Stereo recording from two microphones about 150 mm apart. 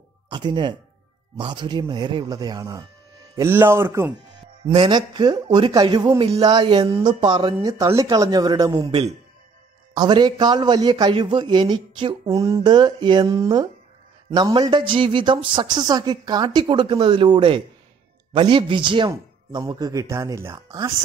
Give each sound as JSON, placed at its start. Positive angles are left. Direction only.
{"t": 0.3, "sound": "a man's voice", "side_deg": -30}
{"t": 4.7, "sound": "speech", "side_deg": -30}
{"t": 6.4, "sound": "speech", "side_deg": -30}
{"t": 8.8, "sound": "speech", "side_deg": -40}